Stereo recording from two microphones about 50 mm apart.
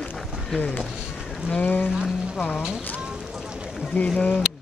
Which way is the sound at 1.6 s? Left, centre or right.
Left.